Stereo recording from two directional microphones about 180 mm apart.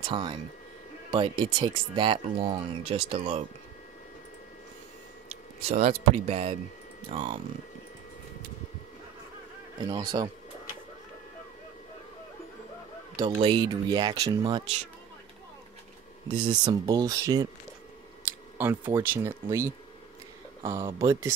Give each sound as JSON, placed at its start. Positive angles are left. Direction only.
{"t": 0.0, "sound": "speech", "side_deg": -25}
{"t": 5.7, "sound": "speech", "side_deg": -40}
{"t": 9.8, "sound": "speech", "side_deg": -20}
{"t": 13.2, "sound": "speech", "side_deg": -25}
{"t": 16.3, "sound": "speech", "side_deg": -25}
{"t": 18.2, "sound": "a sound", "side_deg": -10}
{"t": 18.9, "sound": "speech", "side_deg": -15}